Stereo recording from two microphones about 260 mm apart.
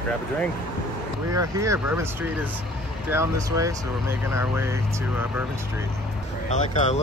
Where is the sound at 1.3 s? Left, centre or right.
Centre.